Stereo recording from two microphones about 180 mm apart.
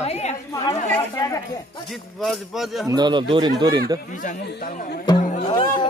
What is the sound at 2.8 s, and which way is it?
Speech, 20° right (ahead or behind).